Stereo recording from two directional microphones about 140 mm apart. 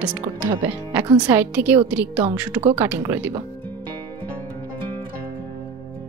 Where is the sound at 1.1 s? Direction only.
10° right (ahead or behind).